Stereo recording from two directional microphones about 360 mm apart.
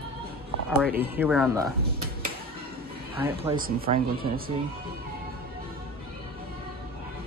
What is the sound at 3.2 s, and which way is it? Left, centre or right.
Speech, centre.